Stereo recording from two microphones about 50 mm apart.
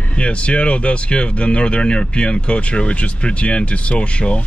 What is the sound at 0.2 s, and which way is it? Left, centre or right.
Speech, left.